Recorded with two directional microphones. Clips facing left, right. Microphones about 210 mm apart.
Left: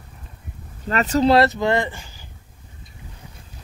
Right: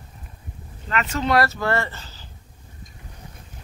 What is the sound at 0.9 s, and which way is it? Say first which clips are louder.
Speech: left 5 dB; 40° left (ahead or behind).